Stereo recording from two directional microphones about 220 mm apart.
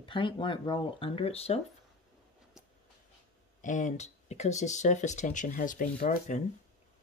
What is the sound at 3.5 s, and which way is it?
Speech, 35° left (ahead or behind).